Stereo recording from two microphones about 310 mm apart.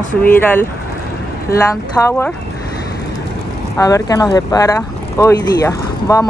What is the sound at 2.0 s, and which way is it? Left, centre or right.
Speech, centre.